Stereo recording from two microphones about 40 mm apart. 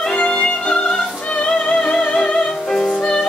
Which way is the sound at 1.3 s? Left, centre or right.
Left.